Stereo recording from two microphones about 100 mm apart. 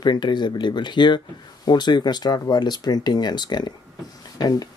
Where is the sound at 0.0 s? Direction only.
50° left (ahead or behind).